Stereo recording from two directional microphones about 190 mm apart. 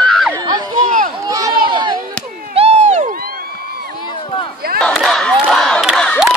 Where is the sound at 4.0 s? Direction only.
25° left (ahead or behind).